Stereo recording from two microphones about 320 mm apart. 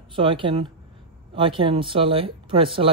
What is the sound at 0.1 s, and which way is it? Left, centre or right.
Speech, centre.